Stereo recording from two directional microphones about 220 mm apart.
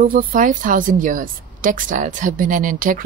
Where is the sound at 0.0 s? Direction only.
40° right (ahead or behind).